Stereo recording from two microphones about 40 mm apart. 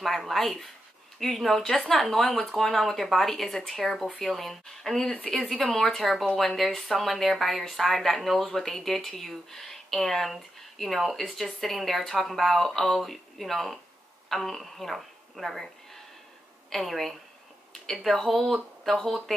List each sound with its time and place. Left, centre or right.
0.0 s a woman's voice: centre
16.7 s speech: centre